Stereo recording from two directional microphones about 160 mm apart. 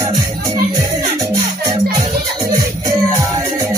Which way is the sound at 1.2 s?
25° right (ahead or behind).